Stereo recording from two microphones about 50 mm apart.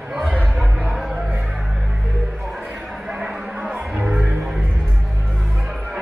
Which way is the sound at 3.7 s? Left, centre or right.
Centre.